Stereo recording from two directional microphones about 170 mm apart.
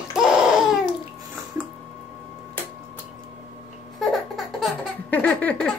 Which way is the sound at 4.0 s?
Centre (ahead or behind).